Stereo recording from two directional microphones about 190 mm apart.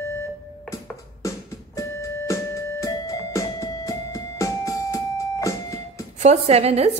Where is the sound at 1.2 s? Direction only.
15° left (ahead or behind).